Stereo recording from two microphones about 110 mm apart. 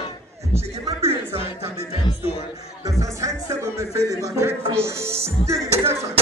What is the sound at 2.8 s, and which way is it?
Music, 30° right (ahead or behind).